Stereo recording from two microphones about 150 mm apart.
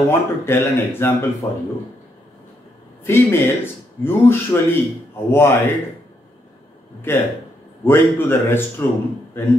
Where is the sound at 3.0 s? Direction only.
15° left (ahead or behind).